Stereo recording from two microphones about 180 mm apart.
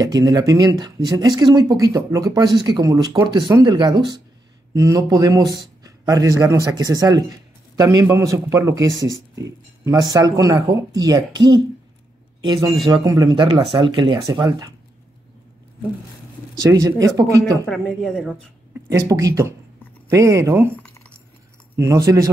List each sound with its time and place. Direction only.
0.0 s speech: 20° right (ahead or behind)
12.8 s speech: 20° right (ahead or behind)
16.7 s speech: 15° right (ahead or behind)
17.6 s speech: 5° left (ahead or behind)
18.9 s speech: 20° right (ahead or behind)
20.8 s a sound: 10° left (ahead or behind)
21.7 s speech: 15° right (ahead or behind)